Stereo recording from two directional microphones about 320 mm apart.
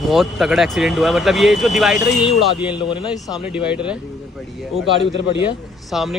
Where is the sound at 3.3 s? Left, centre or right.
Centre.